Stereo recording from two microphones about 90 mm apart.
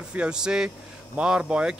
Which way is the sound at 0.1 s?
10° right (ahead or behind).